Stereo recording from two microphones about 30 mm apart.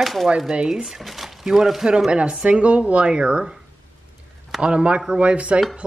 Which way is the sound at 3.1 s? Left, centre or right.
Right.